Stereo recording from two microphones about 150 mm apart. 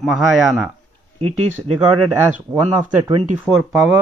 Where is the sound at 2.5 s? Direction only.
25° right (ahead or behind).